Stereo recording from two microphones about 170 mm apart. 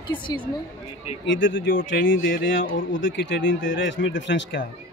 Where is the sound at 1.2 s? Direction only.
90° left.